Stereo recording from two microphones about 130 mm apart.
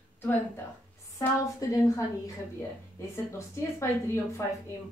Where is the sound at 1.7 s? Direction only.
25° left (ahead or behind).